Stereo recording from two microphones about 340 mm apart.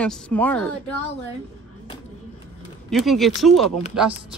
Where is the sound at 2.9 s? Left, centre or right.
Centre.